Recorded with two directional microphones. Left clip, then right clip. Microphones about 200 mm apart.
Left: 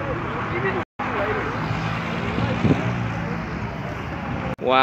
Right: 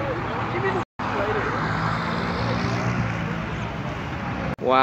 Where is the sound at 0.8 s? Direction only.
40° left (ahead or behind).